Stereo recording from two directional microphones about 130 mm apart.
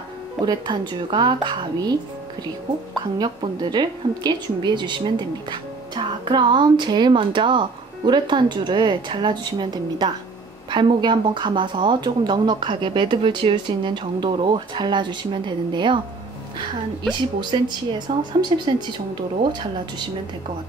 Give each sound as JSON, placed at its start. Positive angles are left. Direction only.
{"t": 0.4, "sound": "speech", "side_deg": -35}
{"t": 3.2, "sound": "speech", "side_deg": -35}
{"t": 17.1, "sound": "speech", "side_deg": -35}